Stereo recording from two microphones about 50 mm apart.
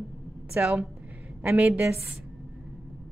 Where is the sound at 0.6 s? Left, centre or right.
Right.